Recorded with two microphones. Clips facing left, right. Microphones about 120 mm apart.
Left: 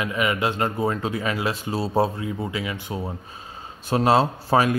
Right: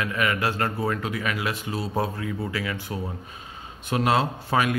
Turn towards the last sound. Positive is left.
turn(degrees=30)  # may be behind; listen again after turning